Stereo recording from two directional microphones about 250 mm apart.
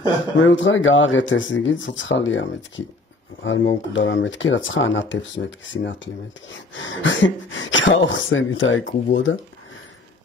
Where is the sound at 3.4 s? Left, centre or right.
Left.